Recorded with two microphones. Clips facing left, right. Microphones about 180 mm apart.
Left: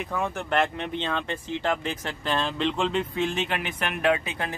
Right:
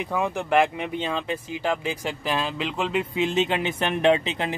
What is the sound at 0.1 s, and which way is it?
Speech, 15° right (ahead or behind).